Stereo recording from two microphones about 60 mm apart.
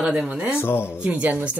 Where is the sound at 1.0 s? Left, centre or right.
Right.